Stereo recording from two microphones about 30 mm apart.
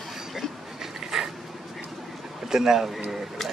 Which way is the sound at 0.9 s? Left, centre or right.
Centre.